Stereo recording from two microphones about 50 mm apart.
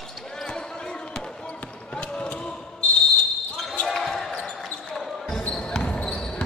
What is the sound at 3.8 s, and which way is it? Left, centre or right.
Basketball bounce, centre.